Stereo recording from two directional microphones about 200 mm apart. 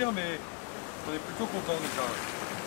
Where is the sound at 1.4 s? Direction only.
20° left (ahead or behind).